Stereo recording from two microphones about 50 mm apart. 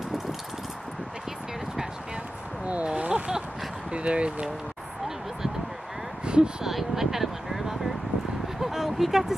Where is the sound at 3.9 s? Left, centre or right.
Right.